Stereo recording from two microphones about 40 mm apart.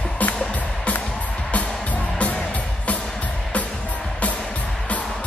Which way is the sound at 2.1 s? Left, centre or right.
Left.